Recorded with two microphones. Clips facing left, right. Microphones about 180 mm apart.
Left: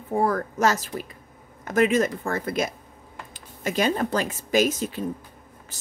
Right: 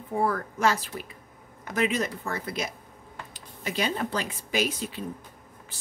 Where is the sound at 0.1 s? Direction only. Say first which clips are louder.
Left 4 dB; 40° left (ahead or behind).